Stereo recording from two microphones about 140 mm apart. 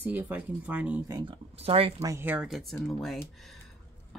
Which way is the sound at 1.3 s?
45° right (ahead or behind).